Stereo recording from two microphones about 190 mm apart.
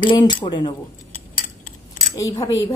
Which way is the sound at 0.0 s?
25° left (ahead or behind).